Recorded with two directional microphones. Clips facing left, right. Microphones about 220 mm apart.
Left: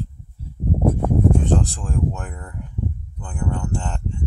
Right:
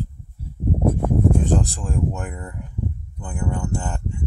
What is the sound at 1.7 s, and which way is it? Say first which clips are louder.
Speech: even; 10° right (ahead or behind).